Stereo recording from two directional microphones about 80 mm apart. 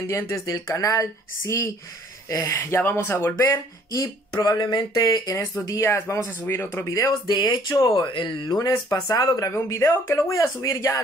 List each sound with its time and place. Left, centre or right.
0.1 s speech: left
3.9 s speech: left
5.9 s speech: left
7.1 s speech: left
8.0 s speech: left
8.5 s speech: left